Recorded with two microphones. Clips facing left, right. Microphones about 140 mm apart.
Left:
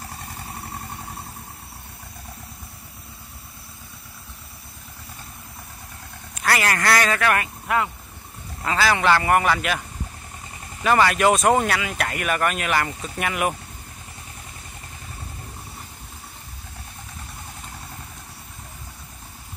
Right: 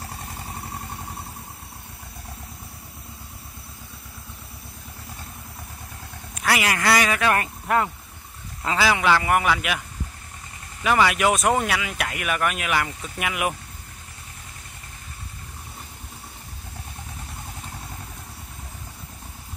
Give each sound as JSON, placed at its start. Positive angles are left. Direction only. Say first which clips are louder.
{"t": 6.3, "sound": "speech", "louder": "left 1 dB", "side_deg": -5}
{"t": 7.3, "sound": "speech", "louder": "right 1 dB", "side_deg": -40}
{"t": 8.6, "sound": "speech", "louder": "left 1 dB", "side_deg": -15}
{"t": 10.8, "sound": "speech", "louder": "left 2 dB", "side_deg": -5}